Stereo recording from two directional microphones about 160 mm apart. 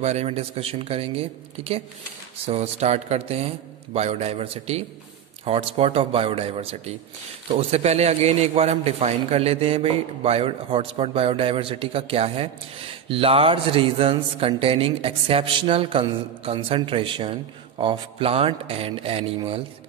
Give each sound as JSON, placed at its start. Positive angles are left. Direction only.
{"t": 0.0, "sound": "a man's voice", "side_deg": -45}